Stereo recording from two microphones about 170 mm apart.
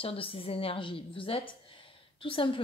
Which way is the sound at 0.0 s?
30° left (ahead or behind).